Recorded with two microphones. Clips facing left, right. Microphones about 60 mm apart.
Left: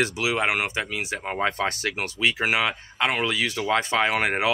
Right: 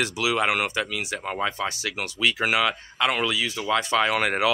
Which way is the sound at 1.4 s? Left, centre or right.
Left.